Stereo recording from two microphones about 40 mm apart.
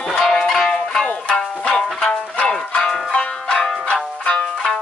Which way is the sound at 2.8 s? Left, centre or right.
Centre.